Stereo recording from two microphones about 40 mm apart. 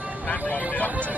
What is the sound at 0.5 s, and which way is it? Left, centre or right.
Vehicle, left.